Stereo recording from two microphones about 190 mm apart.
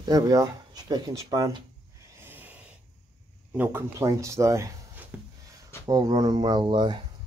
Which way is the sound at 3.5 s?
10° right (ahead or behind).